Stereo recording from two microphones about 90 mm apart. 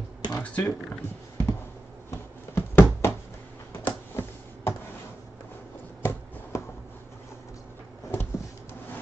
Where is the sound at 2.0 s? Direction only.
25° left (ahead or behind).